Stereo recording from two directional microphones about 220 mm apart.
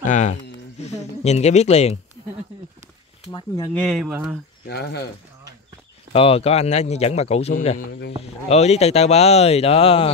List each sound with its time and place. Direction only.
0.0 s speech: 35° left (ahead or behind)
3.3 s speech: 15° left (ahead or behind)
3.7 s speech: centre (ahead or behind)
4.6 s speech: 45° left (ahead or behind)
6.1 s speech: 25° left (ahead or behind)